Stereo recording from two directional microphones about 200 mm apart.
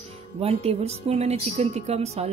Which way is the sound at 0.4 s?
30° right (ahead or behind).